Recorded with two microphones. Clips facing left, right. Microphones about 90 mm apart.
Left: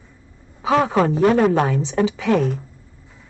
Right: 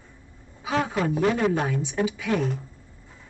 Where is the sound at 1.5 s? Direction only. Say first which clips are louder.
Left 7 dB; 70° left (ahead or behind).